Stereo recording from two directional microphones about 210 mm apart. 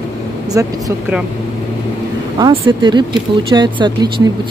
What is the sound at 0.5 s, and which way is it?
Speech, 15° right (ahead or behind).